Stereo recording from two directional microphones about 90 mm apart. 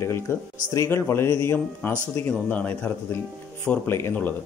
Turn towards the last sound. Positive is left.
turn(degrees=25)  # may be behind; listen again after turning